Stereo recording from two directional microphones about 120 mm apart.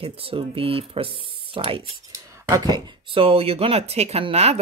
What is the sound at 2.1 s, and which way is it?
Speech, 30° right (ahead or behind).